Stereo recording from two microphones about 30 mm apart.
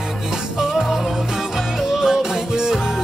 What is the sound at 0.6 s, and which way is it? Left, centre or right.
Music, centre.